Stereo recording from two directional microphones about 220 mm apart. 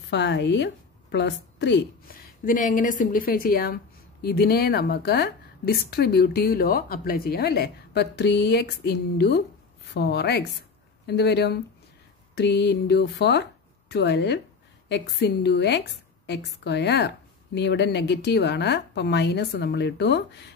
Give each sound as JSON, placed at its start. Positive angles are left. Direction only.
{"t": 0.1, "sound": "a woman's voice", "side_deg": 50}
{"t": 2.4, "sound": "a woman's voice", "side_deg": 35}